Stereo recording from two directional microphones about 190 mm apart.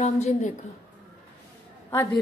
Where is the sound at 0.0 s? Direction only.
40° left (ahead or behind).